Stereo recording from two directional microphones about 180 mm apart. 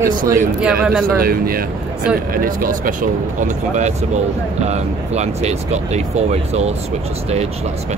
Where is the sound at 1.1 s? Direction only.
55° right (ahead or behind).